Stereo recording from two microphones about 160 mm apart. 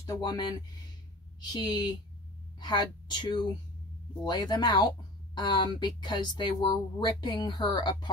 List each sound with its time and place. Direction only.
0.0 s speech: 25° left (ahead or behind)